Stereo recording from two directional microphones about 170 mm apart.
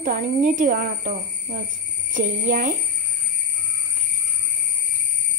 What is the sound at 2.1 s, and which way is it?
Speech, 55° right (ahead or behind).